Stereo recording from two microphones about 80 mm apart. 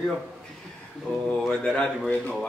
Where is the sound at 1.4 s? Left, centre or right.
Centre.